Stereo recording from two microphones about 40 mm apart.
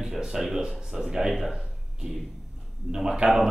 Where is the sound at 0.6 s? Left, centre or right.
Right.